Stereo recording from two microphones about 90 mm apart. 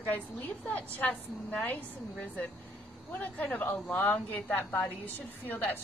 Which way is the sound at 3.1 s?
15° left (ahead or behind).